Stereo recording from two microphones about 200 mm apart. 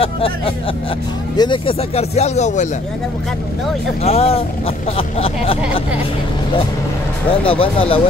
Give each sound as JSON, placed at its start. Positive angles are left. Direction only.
{"t": 1.3, "sound": "speech", "side_deg": 20}
{"t": 4.0, "sound": "speech", "side_deg": 30}
{"t": 7.2, "sound": "speech", "side_deg": 25}